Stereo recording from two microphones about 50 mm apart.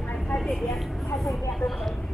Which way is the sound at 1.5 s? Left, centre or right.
Centre.